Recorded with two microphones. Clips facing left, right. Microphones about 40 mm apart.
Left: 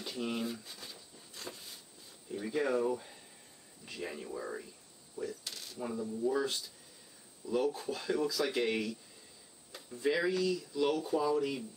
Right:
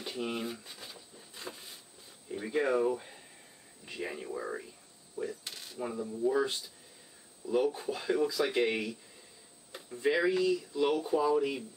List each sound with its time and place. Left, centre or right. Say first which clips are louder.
0.0 s rub: right 1 dB; centre
2.2 s speech: right 3 dB; centre